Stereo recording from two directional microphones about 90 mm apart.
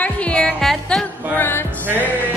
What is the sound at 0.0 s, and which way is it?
Music, 15° left (ahead or behind).